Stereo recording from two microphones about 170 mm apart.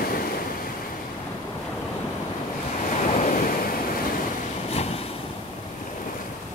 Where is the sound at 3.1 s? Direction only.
50° left (ahead or behind).